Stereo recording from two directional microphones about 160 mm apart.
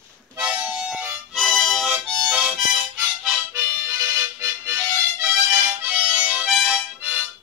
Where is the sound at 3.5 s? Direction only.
15° right (ahead or behind).